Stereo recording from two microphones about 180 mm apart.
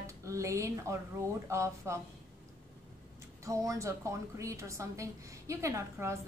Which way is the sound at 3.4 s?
20° right (ahead or behind).